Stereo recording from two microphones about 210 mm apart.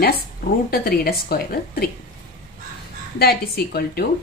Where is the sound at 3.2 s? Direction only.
45° left (ahead or behind).